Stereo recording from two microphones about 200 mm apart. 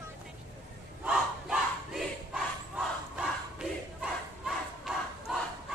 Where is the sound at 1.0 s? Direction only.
5° right (ahead or behind).